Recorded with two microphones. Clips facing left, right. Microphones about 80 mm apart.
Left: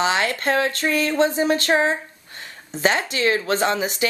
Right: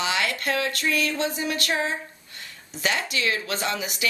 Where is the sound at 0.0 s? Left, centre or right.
Left.